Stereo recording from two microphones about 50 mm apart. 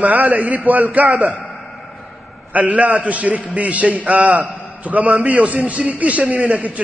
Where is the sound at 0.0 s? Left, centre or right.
Right.